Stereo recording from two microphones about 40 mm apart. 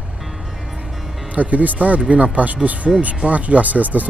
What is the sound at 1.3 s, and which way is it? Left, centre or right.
Speech, right.